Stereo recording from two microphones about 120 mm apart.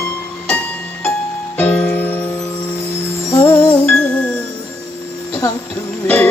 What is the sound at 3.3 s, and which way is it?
Music, 20° left (ahead or behind).